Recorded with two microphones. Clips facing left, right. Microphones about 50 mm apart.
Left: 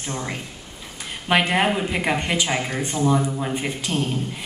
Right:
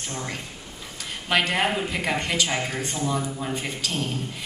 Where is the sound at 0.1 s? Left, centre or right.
Centre.